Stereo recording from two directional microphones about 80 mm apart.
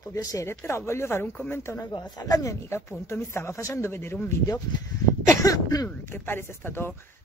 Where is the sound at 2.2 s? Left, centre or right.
Left.